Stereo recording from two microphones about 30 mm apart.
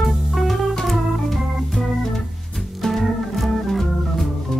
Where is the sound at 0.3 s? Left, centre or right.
Centre.